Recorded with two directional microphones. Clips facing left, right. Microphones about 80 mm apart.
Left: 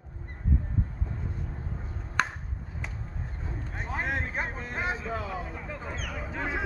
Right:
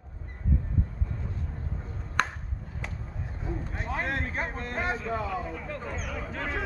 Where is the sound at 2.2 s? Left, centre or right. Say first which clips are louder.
Even; centre.